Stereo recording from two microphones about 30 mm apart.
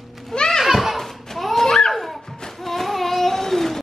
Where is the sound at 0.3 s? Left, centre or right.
Left.